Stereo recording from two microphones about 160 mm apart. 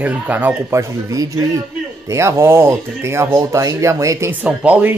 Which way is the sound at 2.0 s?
20° right (ahead or behind).